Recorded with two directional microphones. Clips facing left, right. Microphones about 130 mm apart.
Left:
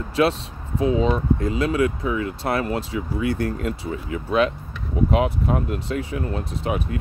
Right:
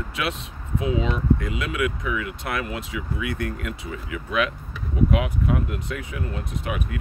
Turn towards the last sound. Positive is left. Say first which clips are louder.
# left 4 dB
turn(degrees=30)  # may be behind; listen again after turning